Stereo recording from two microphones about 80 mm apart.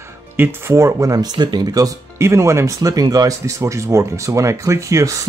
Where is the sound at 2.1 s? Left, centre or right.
Right.